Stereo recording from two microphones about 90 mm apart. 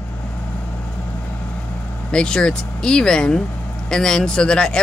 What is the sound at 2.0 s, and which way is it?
Speech, 10° left (ahead or behind).